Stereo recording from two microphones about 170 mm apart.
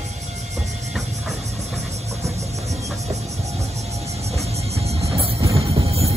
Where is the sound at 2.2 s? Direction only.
20° right (ahead or behind).